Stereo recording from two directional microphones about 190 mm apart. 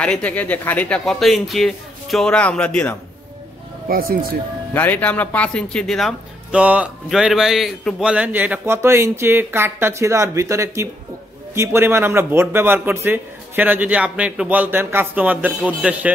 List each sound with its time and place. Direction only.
0.0 s speech: 5° left (ahead or behind)
3.9 s speech: 55° right (ahead or behind)
4.7 s speech: 10° left (ahead or behind)